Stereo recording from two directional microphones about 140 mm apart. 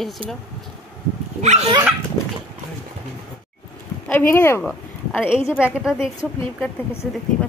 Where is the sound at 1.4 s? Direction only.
55° right (ahead or behind).